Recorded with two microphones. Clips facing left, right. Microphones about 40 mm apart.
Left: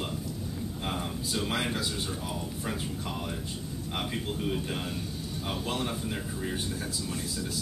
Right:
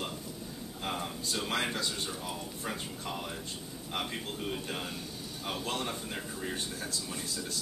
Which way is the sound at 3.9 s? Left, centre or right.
Centre.